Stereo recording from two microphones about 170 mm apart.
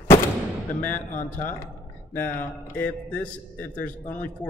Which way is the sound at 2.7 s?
10° left (ahead or behind).